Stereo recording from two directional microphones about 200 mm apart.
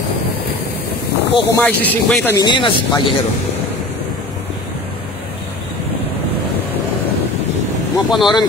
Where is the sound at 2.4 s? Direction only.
25° left (ahead or behind).